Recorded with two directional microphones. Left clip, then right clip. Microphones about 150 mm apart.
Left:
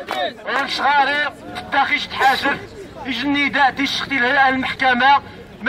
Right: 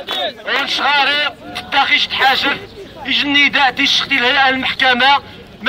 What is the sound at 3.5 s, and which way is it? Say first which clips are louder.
A man's voice: right 4 dB; centre (ahead or behind).